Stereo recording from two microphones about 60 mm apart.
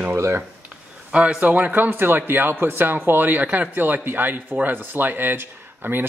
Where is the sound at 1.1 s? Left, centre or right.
Right.